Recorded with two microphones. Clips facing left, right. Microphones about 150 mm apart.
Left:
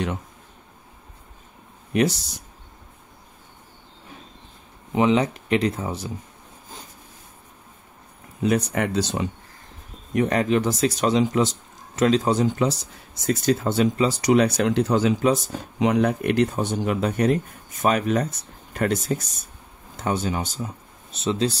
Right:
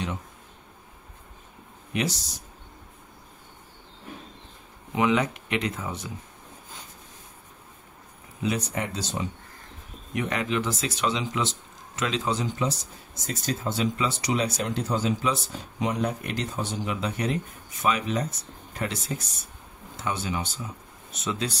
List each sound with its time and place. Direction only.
1.9 s speech: 40° left (ahead or behind)
4.9 s speech: 30° left (ahead or behind)
8.4 s speech: 55° left (ahead or behind)
10.1 s speech: 40° left (ahead or behind)
13.3 s speech: 65° left (ahead or behind)
13.9 s speech: 40° left (ahead or behind)
14.3 s speech: 65° left (ahead or behind)
15.2 s speech: 45° left (ahead or behind)
15.8 s speech: 70° left (ahead or behind)
16.5 s speech: 50° left (ahead or behind)
21.1 s speech: 30° left (ahead or behind)